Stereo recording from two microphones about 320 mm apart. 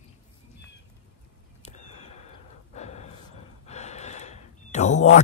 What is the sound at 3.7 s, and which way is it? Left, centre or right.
Sigh, left.